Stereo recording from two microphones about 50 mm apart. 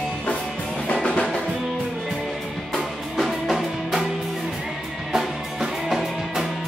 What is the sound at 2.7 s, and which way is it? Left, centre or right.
Music, centre.